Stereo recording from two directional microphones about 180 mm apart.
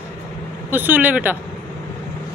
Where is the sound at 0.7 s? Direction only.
10° right (ahead or behind).